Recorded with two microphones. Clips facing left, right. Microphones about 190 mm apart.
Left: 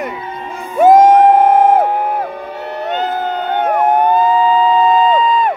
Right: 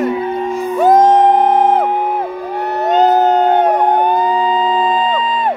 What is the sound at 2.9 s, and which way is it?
Howl, 40° right (ahead or behind).